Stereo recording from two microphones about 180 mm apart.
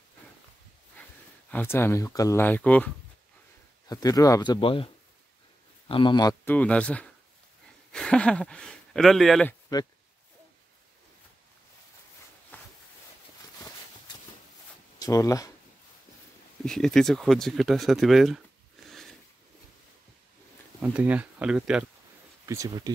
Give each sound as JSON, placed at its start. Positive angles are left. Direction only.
{"t": 1.0, "sound": "a sound", "side_deg": 10}
{"t": 1.5, "sound": "speech", "side_deg": 10}
{"t": 3.9, "sound": "speech", "side_deg": 20}
{"t": 5.9, "sound": "speech", "side_deg": 30}
{"t": 6.4, "sound": "speech", "side_deg": 10}
{"t": 9.5, "sound": "a sound", "side_deg": 20}
{"t": 12.5, "sound": "a sound", "side_deg": 10}
{"t": 15.0, "sound": "speech", "side_deg": 20}
{"t": 16.6, "sound": "speech", "side_deg": 5}
{"t": 18.9, "sound": "a sound", "side_deg": 0}
{"t": 20.8, "sound": "speech", "side_deg": -10}
{"t": 22.5, "sound": "speech", "side_deg": -20}